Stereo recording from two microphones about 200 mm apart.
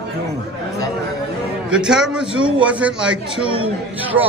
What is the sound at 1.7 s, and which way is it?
Speech, 5° right (ahead or behind).